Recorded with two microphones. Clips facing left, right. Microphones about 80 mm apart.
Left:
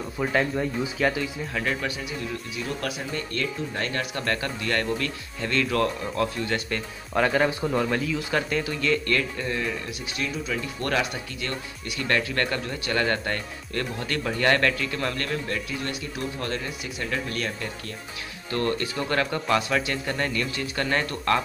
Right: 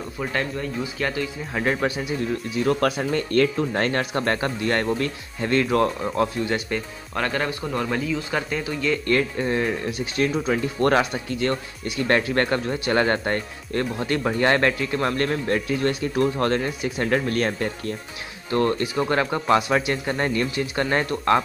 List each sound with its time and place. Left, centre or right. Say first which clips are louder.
0.2 s a man's voice: left 2 dB; centre
1.5 s speech: right 7 dB; right
2.5 s speech: right 12 dB; right
4.0 s speech: right 5 dB; right
7.2 s a man's voice: left 3 dB; centre
9.0 s speech: right 5 dB; right
18.5 s speech: right 5 dB; centre